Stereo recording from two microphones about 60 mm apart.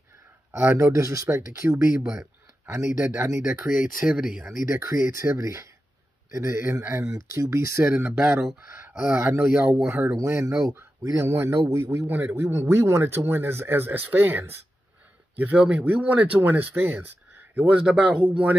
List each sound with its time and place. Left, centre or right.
0.5 s speech: right
0.9 s speech: right
4.0 s speech: centre
4.6 s speech: right
7.1 s speech: right
7.8 s speech: right
8.2 s speech: centre
8.5 s speech: right
10.1 s speech: right
15.5 s speech: right